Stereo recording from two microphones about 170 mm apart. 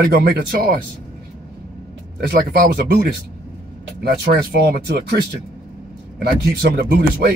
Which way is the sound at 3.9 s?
70° right (ahead or behind).